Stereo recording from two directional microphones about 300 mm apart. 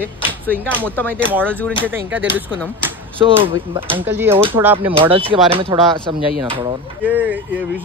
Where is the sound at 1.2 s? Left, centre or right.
Centre.